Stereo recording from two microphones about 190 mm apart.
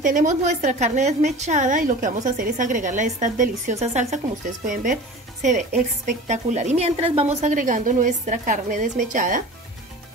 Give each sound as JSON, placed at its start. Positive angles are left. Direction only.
{"t": 0.0, "sound": "a woman's voice", "side_deg": -45}